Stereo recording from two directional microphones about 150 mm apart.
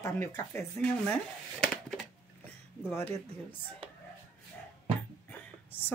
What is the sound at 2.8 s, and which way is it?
Speech, 15° left (ahead or behind).